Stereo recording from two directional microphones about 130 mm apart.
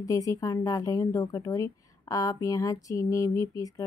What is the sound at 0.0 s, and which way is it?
A woman's voice, 25° left (ahead or behind).